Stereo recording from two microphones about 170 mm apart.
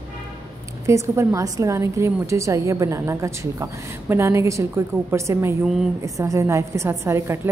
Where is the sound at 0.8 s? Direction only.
15° right (ahead or behind).